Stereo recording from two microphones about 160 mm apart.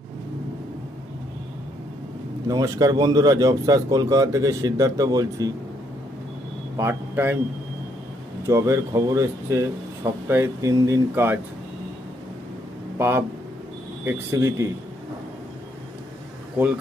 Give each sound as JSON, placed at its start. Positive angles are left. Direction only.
{"t": 2.4, "sound": "speech", "side_deg": -20}
{"t": 6.8, "sound": "a man's voice", "side_deg": -15}
{"t": 8.5, "sound": "speech", "side_deg": -20}
{"t": 12.9, "sound": "speech", "side_deg": -15}